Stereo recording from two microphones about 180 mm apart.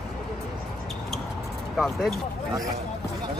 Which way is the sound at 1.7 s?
Centre (ahead or behind).